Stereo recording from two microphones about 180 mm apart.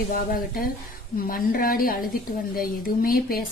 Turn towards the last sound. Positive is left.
turn(degrees=55)  # may be behind; listen again after turning